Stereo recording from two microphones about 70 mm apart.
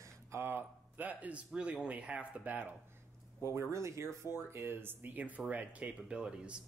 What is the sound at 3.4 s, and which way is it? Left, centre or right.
Speech, right.